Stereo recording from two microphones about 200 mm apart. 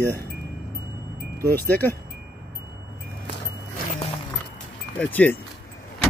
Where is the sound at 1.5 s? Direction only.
10° left (ahead or behind).